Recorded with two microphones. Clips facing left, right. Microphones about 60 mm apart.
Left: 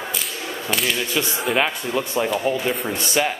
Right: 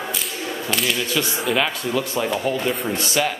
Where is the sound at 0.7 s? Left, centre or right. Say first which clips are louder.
Even; centre.